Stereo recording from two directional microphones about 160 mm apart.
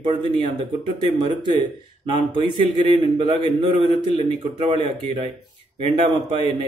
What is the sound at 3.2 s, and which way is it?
Speech, 35° right (ahead or behind).